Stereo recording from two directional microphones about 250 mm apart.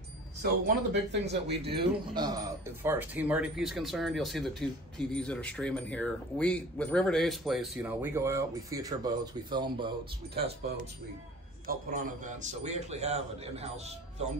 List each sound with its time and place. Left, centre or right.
0.4 s speech: right
2.1 s speech: centre
11.6 s a man's voice: right